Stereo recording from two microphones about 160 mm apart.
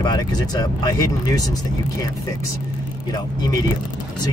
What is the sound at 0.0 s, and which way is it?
Speech, 25° left (ahead or behind).